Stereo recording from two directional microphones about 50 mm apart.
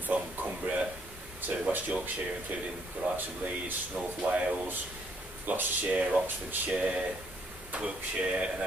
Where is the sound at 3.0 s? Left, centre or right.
Right.